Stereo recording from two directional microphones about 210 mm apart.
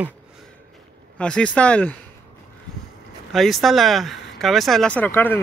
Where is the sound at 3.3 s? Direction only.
Centre (ahead or behind).